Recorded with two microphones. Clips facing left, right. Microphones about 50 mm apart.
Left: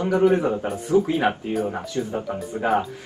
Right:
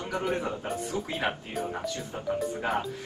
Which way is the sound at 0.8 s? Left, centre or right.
Left.